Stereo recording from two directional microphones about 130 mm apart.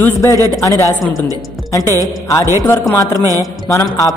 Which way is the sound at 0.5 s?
25° left (ahead or behind).